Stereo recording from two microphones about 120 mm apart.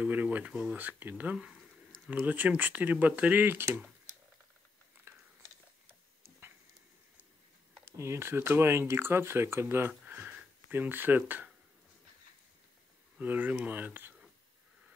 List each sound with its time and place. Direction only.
0.0 s speech: 15° right (ahead or behind)
5.1 s a sound: 20° right (ahead or behind)
7.8 s speech: 25° right (ahead or behind)
13.2 s speech: 15° right (ahead or behind)